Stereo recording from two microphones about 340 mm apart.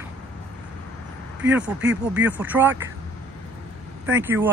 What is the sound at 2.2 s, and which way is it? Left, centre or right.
Speech, centre.